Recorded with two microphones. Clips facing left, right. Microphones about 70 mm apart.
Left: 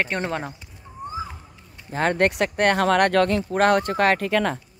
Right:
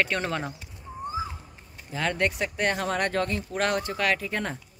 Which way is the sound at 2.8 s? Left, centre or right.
Left.